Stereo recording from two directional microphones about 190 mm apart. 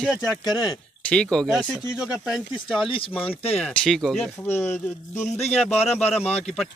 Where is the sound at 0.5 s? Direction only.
20° left (ahead or behind).